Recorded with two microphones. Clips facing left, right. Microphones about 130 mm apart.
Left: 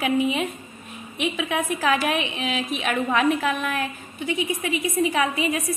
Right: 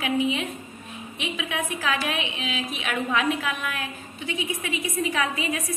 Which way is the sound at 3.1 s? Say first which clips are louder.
Left 4 dB; 50° left (ahead or behind).